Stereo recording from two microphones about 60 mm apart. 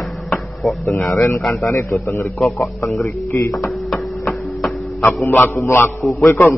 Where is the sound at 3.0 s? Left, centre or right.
Left.